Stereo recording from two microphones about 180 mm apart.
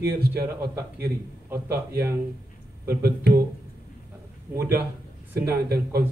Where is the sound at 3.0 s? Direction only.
60° right (ahead or behind).